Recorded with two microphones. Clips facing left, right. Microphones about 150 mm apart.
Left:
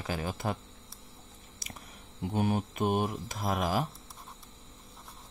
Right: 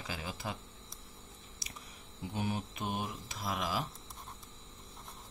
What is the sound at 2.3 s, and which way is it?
Speech, 50° left (ahead or behind).